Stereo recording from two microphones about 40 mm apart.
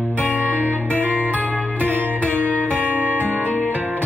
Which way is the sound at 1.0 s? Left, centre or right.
Right.